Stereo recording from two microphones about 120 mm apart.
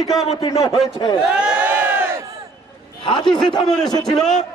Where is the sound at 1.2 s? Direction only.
10° right (ahead or behind).